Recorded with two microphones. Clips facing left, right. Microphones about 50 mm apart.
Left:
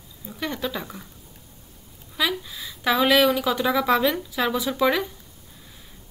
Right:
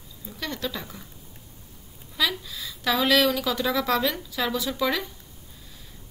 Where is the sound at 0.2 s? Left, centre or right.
Centre.